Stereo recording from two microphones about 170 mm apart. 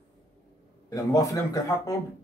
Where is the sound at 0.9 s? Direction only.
20° left (ahead or behind).